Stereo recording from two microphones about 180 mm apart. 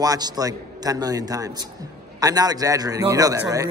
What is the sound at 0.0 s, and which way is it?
A man's voice, 20° right (ahead or behind).